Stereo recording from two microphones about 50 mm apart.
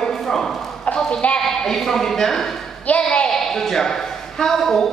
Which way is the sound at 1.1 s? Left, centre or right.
Left.